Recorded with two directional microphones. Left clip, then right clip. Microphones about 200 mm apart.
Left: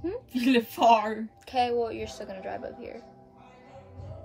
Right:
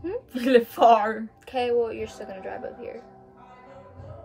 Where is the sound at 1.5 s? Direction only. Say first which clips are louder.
Right 2 dB; 15° left (ahead or behind).